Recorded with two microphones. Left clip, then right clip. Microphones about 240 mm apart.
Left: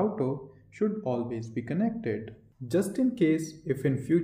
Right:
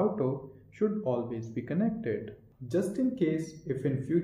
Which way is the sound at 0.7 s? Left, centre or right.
Left.